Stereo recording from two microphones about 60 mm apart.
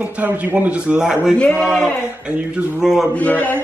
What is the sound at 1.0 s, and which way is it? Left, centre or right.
Speech, centre.